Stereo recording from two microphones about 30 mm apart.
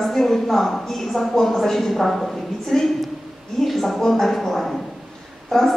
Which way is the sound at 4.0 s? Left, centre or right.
Centre.